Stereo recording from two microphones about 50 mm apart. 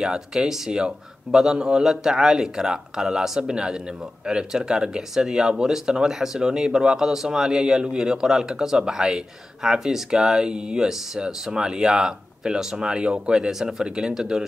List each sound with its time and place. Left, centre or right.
0.0 s speech: centre